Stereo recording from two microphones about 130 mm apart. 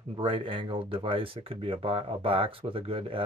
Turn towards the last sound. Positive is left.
turn(degrees=-45)  # may be behind; listen again after turning